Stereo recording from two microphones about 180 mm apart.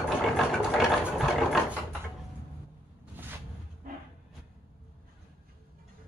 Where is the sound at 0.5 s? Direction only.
Centre (ahead or behind).